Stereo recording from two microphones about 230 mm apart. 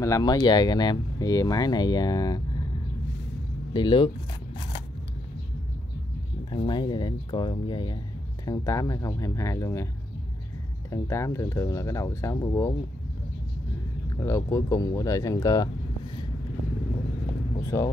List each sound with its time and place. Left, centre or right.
0.0 s speech: centre
3.7 s speech: left
6.5 s speech: left
10.9 s speech: centre
14.2 s speech: centre
17.7 s speech: centre